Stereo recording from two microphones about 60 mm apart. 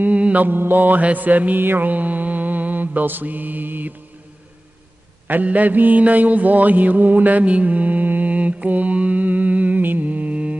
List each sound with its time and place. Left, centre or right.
0.0 s mantra: right
5.3 s mantra: right